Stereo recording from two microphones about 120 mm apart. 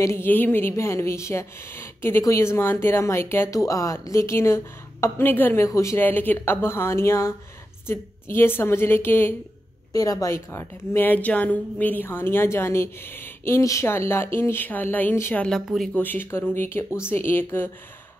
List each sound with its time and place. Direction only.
0.0 s a woman's voice: 20° left (ahead or behind)
9.9 s a woman's voice: 30° left (ahead or behind)
15.4 s speech: centre (ahead or behind)
15.9 s a woman's voice: 15° left (ahead or behind)